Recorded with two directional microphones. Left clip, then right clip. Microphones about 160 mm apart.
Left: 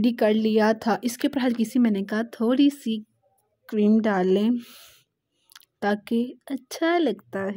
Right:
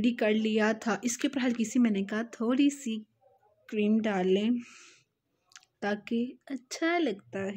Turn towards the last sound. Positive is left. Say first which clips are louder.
# left 6 dB
turn(degrees=45)  # may be behind; listen again after turning